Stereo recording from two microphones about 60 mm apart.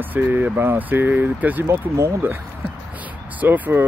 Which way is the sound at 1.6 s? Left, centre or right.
Right.